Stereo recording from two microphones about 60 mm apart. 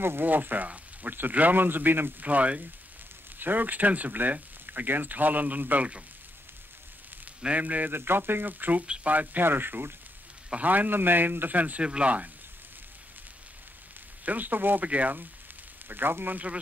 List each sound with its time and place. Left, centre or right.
0.0 s speech: right
2.2 s speech: right
7.4 s speech: right
7.9 s speech: right
8.8 s speech: centre
9.1 s speech: right
10.5 s speech: right
14.2 s speech: right
15.9 s speech: right